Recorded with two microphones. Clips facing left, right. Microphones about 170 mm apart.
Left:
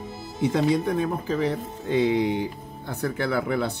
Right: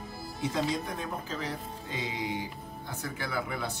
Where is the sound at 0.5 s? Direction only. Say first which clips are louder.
Left 10 dB; 60° left (ahead or behind).